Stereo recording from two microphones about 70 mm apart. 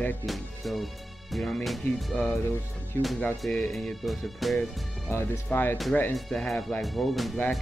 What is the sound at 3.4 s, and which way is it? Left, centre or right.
Speech, centre.